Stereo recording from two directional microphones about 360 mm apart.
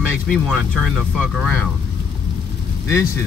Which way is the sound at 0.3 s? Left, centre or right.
Centre.